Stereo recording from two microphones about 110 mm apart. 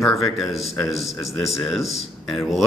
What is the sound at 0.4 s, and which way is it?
Speech, centre (ahead or behind).